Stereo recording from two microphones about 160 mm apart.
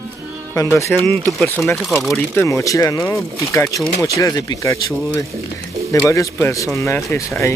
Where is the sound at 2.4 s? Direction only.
20° left (ahead or behind).